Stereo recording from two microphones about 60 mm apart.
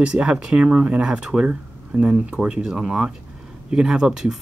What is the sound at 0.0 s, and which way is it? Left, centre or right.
Speech, centre.